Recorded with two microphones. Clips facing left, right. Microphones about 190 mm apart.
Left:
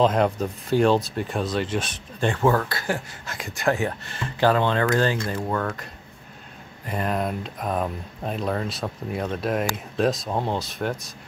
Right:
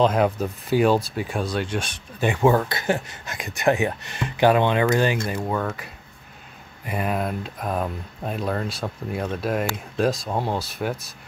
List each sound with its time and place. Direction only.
0.0 s speech: 5° right (ahead or behind)
2.2 s speech: 15° right (ahead or behind)
6.9 s speech: 5° right (ahead or behind)